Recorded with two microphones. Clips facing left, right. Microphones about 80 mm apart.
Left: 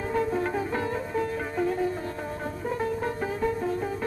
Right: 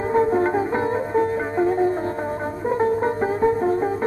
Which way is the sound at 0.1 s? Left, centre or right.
Right.